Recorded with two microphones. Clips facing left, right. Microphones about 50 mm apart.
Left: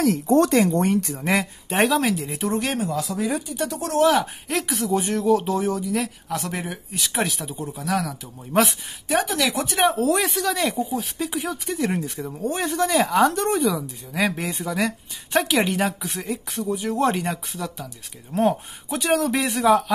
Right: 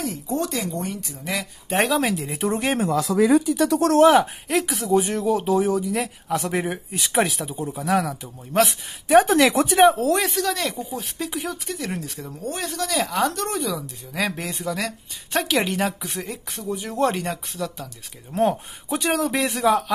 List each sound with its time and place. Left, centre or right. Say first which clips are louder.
0.0 s speech: left 8 dB; left
1.2 s speech: left 3 dB; left
1.7 s speech: even; centre
2.5 s speech: right 1 dB; centre
2.9 s speech: right 7 dB; right
4.5 s speech: right 2 dB; centre
7.6 s speech: right 3 dB; centre
9.0 s speech: right 7 dB; right
9.8 s speech: right 3 dB; centre
11.9 s speech: left 4 dB; centre
13.6 s speech: left 4 dB; centre